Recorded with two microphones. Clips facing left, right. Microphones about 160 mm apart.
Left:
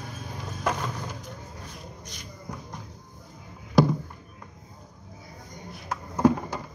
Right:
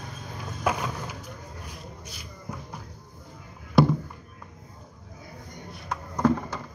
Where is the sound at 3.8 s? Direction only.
Centre (ahead or behind).